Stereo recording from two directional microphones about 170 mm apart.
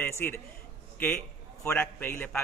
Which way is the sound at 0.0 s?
15° left (ahead or behind).